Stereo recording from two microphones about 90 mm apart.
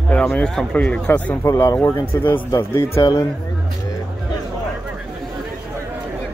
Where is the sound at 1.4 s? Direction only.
35° left (ahead or behind).